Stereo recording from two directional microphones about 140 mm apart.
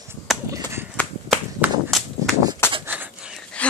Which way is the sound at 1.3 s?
10° right (ahead or behind).